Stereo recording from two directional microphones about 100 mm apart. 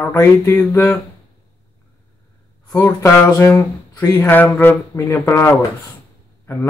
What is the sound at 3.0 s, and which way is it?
Speech, 25° left (ahead or behind).